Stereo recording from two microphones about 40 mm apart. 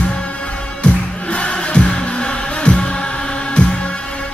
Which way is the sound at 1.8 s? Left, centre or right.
Left.